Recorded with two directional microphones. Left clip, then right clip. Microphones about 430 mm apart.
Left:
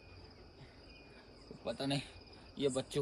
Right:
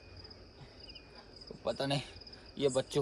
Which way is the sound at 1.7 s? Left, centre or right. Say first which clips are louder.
Right 4 dB; centre.